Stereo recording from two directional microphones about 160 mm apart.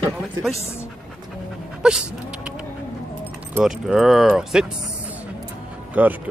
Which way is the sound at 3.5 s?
Centre (ahead or behind).